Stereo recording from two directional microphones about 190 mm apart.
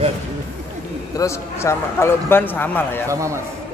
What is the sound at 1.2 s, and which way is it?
A man's voice, 15° left (ahead or behind).